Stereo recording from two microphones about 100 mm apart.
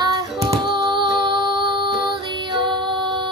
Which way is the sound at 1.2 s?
50° right (ahead or behind).